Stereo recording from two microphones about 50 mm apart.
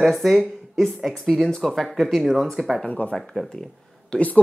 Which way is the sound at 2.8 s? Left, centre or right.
Left.